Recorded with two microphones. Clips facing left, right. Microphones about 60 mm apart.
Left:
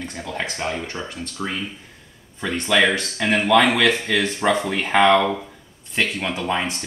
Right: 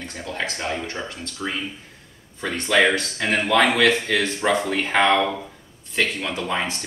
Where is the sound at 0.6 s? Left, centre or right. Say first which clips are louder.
Left 1 dB; centre.